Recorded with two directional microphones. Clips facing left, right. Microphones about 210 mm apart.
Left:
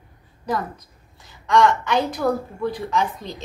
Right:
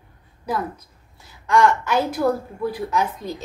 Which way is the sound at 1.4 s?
5° right (ahead or behind).